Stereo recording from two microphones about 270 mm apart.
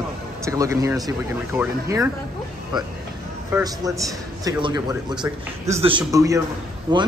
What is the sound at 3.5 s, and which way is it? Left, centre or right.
Speech, centre.